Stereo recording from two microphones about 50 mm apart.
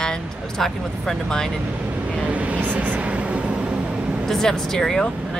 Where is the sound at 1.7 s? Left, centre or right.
Right.